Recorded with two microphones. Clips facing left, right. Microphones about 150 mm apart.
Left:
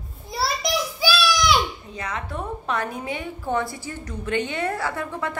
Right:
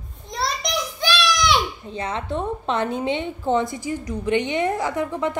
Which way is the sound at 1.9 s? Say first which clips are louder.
Right 6 dB; 30° right (ahead or behind).